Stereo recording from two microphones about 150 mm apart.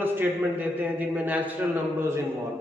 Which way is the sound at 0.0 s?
15° right (ahead or behind).